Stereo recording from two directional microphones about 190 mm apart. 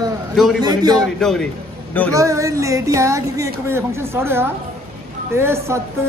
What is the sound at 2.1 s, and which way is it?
A man's voice, 15° right (ahead or behind).